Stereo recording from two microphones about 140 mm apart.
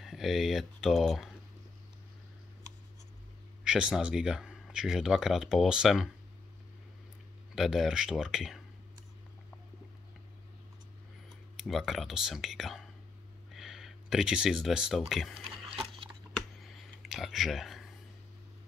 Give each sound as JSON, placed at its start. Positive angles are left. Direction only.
{"t": 0.0, "sound": "speech", "side_deg": 0}
{"t": 3.6, "sound": "speech", "side_deg": -5}
{"t": 7.5, "sound": "speech", "side_deg": 0}
{"t": 11.5, "sound": "speech", "side_deg": 0}
{"t": 15.7, "sound": "a sound", "side_deg": -40}
{"t": 16.3, "sound": "a sound", "side_deg": 0}